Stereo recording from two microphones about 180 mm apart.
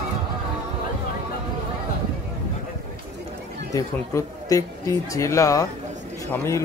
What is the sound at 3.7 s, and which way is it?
Speech, 20° left (ahead or behind).